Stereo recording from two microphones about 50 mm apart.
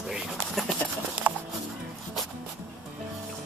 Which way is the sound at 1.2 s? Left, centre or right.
Right.